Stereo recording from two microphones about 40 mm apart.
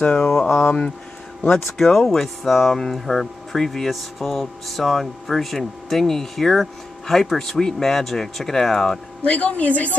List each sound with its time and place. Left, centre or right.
0.2 s a sound: left
1.8 s speech: centre
9.2 s a woman's voice: left